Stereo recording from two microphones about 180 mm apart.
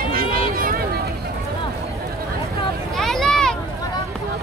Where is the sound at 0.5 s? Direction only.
55° right (ahead or behind).